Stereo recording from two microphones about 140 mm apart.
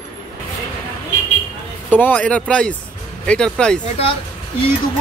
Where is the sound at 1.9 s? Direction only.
10° left (ahead or behind).